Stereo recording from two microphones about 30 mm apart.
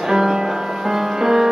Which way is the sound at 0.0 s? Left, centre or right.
Centre.